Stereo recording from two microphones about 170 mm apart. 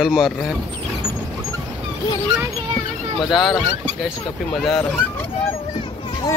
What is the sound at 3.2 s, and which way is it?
Speech, centre (ahead or behind).